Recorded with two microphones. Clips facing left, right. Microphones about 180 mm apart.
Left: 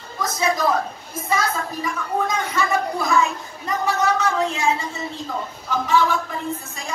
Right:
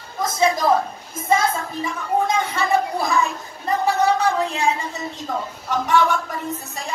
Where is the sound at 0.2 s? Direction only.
25° right (ahead or behind).